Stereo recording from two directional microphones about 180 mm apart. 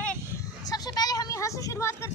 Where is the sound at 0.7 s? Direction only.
20° left (ahead or behind).